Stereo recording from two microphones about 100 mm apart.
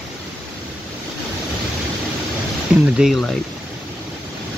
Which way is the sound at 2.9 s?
5° right (ahead or behind).